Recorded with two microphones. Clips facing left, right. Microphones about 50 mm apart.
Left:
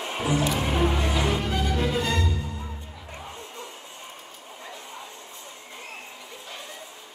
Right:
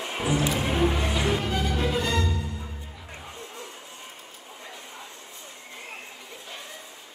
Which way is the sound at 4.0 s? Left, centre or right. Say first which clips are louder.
Left 1 dB; centre.